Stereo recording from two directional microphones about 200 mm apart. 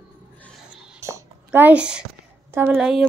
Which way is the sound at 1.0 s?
10° right (ahead or behind).